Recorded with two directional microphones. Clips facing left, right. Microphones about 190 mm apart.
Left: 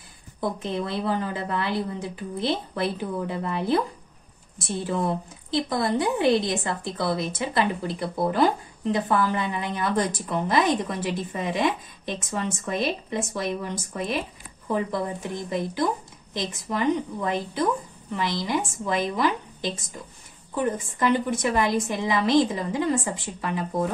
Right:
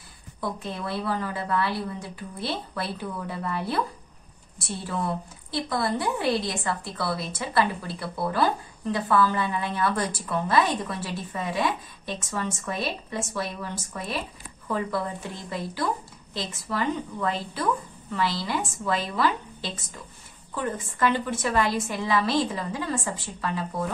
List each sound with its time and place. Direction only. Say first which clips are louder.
0.4 s a woman's voice: left 4 dB; 20° left (ahead or behind)
4.8 s a woman's voice: left 3 dB; 20° left (ahead or behind)